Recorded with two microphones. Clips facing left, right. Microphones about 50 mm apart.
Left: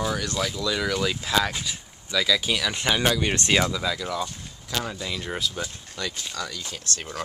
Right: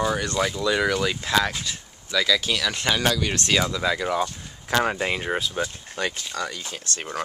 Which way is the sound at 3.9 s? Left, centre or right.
Right.